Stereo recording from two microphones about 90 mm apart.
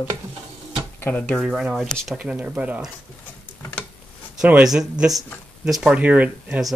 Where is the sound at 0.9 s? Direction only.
25° left (ahead or behind).